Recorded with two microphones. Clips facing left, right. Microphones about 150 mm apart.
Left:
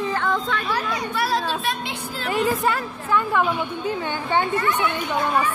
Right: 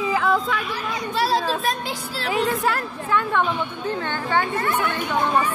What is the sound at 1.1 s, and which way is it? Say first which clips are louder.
Children playing: right 4 dB; 30° right (ahead or behind).